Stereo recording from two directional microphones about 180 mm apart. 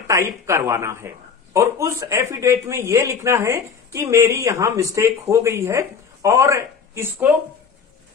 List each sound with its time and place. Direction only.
0.5 s a man's voice: 15° right (ahead or behind)